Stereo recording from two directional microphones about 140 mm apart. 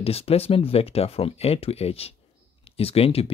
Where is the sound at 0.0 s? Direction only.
45° left (ahead or behind).